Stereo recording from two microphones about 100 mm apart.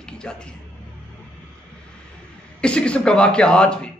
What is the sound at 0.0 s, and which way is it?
Speech, 10° left (ahead or behind).